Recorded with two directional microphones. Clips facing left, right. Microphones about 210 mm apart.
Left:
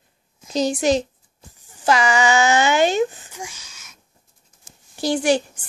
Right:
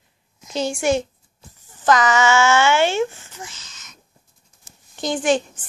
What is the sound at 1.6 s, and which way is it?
A woman's voice, 15° left (ahead or behind).